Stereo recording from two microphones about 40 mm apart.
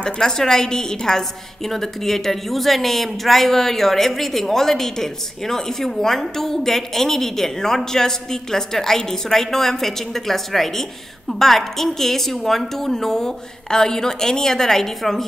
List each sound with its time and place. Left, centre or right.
0.0 s a woman's voice: centre